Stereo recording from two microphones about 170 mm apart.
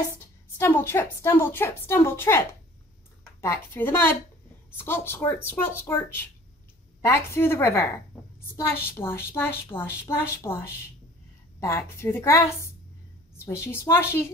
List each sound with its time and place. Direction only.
0.6 s a woman's voice: 15° left (ahead or behind)
9.0 s a woman's voice: 15° left (ahead or behind)